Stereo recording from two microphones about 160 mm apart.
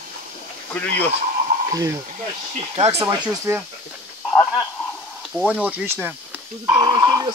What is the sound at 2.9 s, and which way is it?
Speech, 20° right (ahead or behind).